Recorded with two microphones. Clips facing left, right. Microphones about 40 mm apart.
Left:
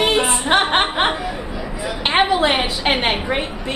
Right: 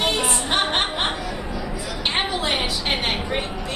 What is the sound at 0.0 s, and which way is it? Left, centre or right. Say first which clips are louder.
Music: left 5 dB; left.